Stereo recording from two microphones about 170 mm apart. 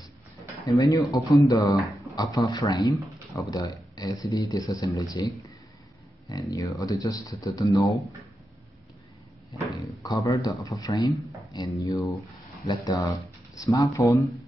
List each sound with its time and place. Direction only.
0.7 s speech: 20° left (ahead or behind)
6.5 s speech: 20° left (ahead or behind)
10.0 s speech: 20° left (ahead or behind)